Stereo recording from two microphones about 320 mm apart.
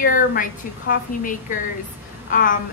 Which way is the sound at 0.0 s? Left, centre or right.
Left.